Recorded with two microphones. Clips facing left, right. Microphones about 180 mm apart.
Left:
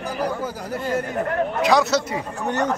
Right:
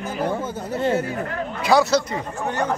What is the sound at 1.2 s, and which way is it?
Speech, 50° left (ahead or behind).